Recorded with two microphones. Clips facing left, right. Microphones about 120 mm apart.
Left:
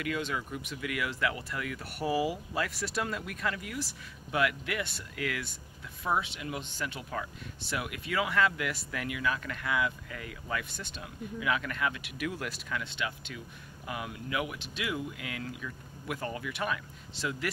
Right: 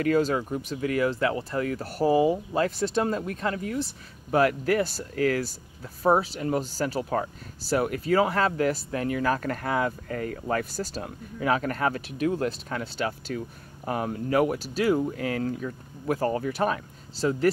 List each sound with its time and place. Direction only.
0.0 s speech: 40° right (ahead or behind)